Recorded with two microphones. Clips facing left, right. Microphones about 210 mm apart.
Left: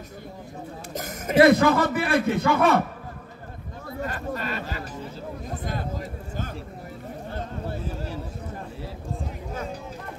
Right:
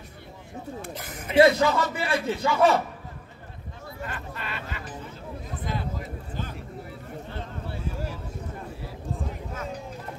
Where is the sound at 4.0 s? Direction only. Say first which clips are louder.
Left 7 dB; 40° left (ahead or behind).